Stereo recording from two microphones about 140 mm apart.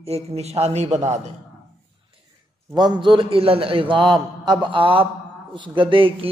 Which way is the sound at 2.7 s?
30° right (ahead or behind).